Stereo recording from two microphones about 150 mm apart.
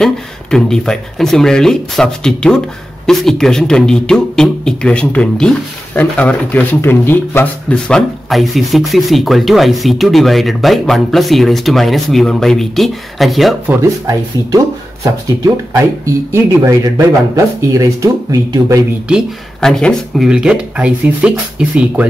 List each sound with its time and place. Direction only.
0.0 s speech: 5° left (ahead or behind)
13.7 s speech: 20° right (ahead or behind)
19.0 s speech: centre (ahead or behind)